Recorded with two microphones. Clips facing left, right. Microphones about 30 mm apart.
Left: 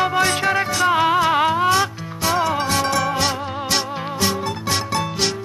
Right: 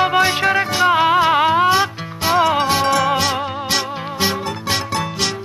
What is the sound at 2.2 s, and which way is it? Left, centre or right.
Music, right.